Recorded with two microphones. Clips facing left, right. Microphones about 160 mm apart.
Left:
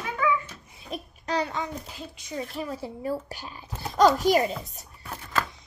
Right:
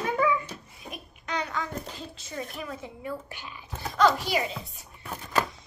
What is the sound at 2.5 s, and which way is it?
A woman's voice, 30° left (ahead or behind).